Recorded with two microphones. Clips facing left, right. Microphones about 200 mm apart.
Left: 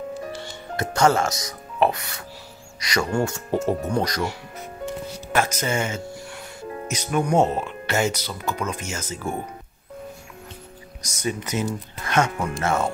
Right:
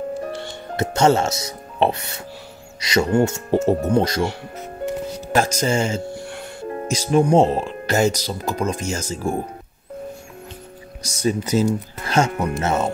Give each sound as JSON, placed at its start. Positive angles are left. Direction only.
{"t": 0.2, "sound": "music", "side_deg": -55}
{"t": 0.7, "sound": "speech", "side_deg": -25}
{"t": 5.3, "sound": "speech", "side_deg": -35}
{"t": 6.2, "sound": "music", "side_deg": -55}
{"t": 6.9, "sound": "speech", "side_deg": -30}
{"t": 11.1, "sound": "speech", "side_deg": -35}